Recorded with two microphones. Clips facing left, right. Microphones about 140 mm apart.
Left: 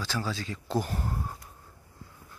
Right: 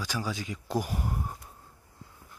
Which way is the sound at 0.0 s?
15° right (ahead or behind).